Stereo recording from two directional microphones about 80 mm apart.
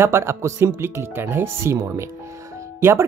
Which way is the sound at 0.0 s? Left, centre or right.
Right.